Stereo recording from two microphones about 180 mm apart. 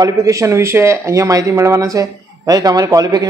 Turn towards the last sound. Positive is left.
turn(degrees=-20)  # may be behind; listen again after turning